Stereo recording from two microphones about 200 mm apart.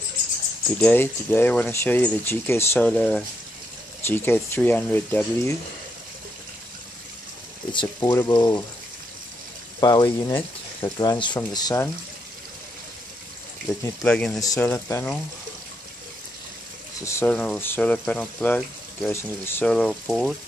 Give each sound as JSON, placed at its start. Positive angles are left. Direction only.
{"t": 0.7, "sound": "speech", "side_deg": 10}
{"t": 7.7, "sound": "speech", "side_deg": 25}
{"t": 9.8, "sound": "speech", "side_deg": 20}
{"t": 10.8, "sound": "speech", "side_deg": 20}
{"t": 14.0, "sound": "speech", "side_deg": 5}
{"t": 14.4, "sound": "speech", "side_deg": 15}
{"t": 17.0, "sound": "speech", "side_deg": 10}